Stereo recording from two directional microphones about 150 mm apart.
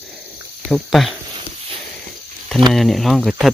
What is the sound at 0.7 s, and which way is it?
Speech, centre (ahead or behind).